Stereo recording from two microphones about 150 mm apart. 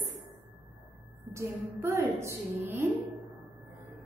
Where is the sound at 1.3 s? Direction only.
15° right (ahead or behind).